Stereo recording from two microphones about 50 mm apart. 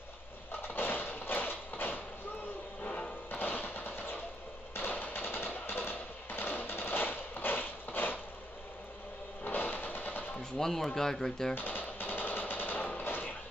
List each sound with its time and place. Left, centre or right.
0.5 s a sound: left
2.8 s music: left
3.3 s music: left
9.4 s vehicle: left
10.6 s speech: centre
11.5 s a sound: left